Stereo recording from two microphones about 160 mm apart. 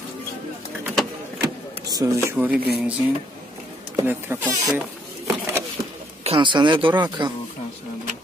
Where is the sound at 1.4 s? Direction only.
25° right (ahead or behind).